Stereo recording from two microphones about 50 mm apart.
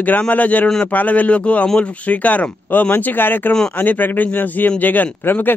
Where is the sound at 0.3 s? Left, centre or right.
Left.